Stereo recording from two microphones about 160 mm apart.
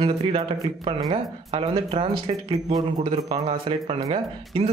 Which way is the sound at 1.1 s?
35° right (ahead or behind).